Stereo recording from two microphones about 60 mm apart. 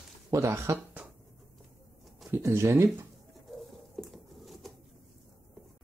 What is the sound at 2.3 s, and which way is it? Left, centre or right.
Speech, right.